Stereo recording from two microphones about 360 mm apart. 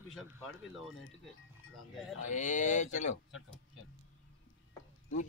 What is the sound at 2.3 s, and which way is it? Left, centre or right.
Speech, centre.